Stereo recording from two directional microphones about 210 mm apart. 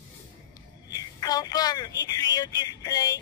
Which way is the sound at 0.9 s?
20° left (ahead or behind).